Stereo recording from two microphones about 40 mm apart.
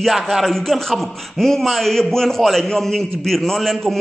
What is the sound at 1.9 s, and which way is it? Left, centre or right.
A man's voice, centre.